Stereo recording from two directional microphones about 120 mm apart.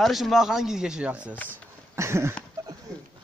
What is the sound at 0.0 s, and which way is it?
Speech, centre (ahead or behind).